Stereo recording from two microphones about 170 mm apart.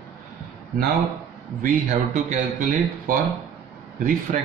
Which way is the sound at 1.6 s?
50° right (ahead or behind).